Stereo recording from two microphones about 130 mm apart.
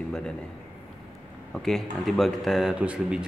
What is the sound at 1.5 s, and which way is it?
Speech, centre (ahead or behind).